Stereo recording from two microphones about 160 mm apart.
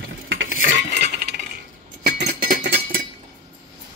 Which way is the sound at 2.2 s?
70° right (ahead or behind).